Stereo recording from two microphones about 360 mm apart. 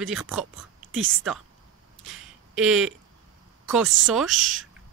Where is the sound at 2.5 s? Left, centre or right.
Centre.